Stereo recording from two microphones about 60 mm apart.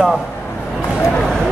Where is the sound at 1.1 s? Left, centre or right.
Centre.